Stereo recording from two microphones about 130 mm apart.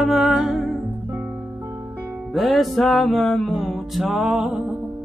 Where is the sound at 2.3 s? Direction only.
Centre (ahead or behind).